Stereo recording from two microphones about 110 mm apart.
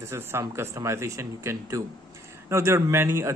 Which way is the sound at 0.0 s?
25° right (ahead or behind).